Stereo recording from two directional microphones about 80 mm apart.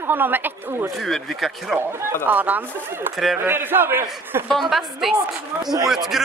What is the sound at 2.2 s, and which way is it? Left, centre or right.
A woman's voice, right.